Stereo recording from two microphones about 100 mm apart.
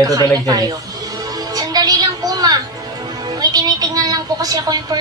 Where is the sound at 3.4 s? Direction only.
40° right (ahead or behind).